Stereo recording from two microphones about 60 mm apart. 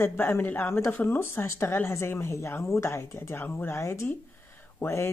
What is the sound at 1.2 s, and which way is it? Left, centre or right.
Speech, left.